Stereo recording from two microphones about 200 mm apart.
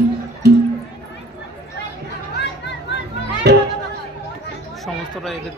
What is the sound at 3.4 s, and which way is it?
Music, 55° right (ahead or behind).